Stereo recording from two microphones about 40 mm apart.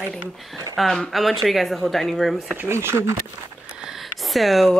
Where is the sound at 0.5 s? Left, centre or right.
Centre.